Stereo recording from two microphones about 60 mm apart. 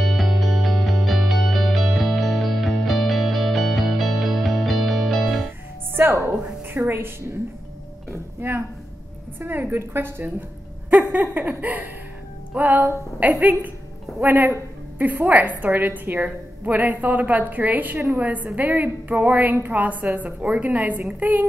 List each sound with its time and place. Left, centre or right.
0.0 s music: centre
6.6 s a woman's voice: right
8.1 s music: right
9.4 s a woman's voice: right
10.9 s a sound: right
12.5 s a woman's voice: right